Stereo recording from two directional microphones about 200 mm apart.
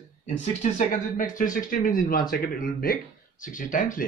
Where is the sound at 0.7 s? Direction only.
40° left (ahead or behind).